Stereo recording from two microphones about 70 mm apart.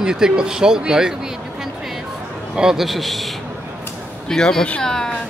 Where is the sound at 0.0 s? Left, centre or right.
Centre.